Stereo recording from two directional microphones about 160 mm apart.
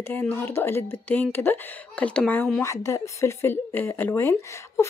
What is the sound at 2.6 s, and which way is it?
Speech, 20° left (ahead or behind).